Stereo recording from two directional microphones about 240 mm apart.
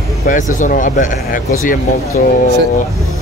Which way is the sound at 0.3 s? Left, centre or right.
Left.